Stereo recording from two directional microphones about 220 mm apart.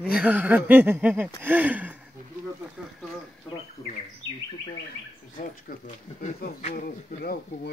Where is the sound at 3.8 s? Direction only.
20° left (ahead or behind).